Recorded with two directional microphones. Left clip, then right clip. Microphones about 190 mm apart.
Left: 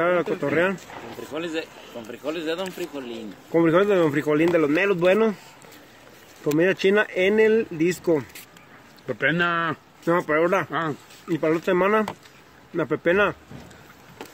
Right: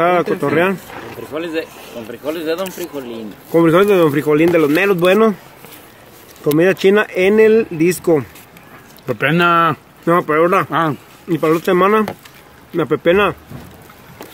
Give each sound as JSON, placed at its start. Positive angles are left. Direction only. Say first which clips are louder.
{"t": 0.0, "sound": "speech", "louder": "right 8 dB", "side_deg": 0}
{"t": 1.3, "sound": "speech", "louder": "right 7 dB", "side_deg": 45}
{"t": 3.5, "sound": "speech", "louder": "right 7 dB", "side_deg": -5}
{"t": 6.4, "sound": "speech", "louder": "right 8 dB", "side_deg": 0}
{"t": 9.0, "sound": "speech", "louder": "right 8 dB", "side_deg": -50}
{"t": 10.0, "sound": "speech", "louder": "right 8 dB", "side_deg": -5}
{"t": 10.7, "sound": "speech", "louder": "right 10 dB", "side_deg": -50}
{"t": 11.2, "sound": "speech", "louder": "right 7 dB", "side_deg": 0}